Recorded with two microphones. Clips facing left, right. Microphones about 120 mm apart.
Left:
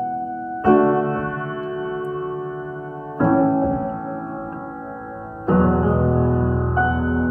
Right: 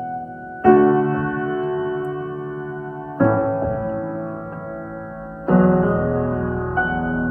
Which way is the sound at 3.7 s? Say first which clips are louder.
Even; 30° left (ahead or behind).